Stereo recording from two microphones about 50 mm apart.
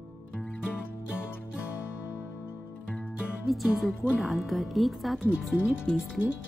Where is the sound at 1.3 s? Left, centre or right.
Left.